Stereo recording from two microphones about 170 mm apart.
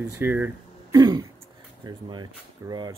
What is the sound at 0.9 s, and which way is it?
Speech, 25° right (ahead or behind).